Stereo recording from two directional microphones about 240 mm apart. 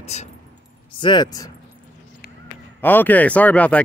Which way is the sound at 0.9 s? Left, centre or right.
Centre.